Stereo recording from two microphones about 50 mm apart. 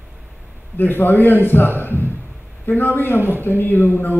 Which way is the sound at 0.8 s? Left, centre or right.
Left.